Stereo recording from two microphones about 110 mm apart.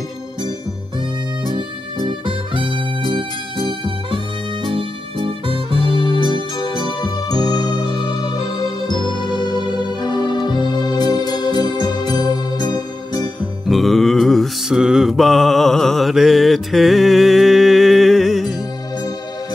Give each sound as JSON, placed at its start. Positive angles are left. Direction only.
{"t": 2.0, "sound": "music", "side_deg": -50}
{"t": 5.9, "sound": "music", "side_deg": 45}
{"t": 8.9, "sound": "music", "side_deg": -40}
{"t": 9.9, "sound": "music", "side_deg": 40}
{"t": 13.7, "sound": "mantra", "side_deg": 0}